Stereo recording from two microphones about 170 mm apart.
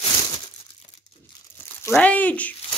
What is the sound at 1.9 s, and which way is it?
Speech, 10° left (ahead or behind).